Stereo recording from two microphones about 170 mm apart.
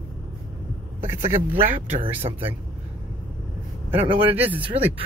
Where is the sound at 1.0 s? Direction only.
15° right (ahead or behind).